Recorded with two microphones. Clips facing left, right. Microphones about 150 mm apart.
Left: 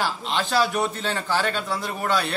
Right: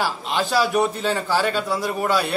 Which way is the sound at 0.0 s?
10° right (ahead or behind).